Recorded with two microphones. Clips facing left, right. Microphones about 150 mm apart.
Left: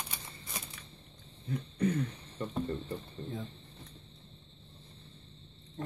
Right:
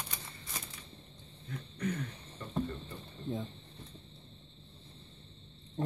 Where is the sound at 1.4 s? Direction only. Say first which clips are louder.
Left 6 dB; 25° left (ahead or behind).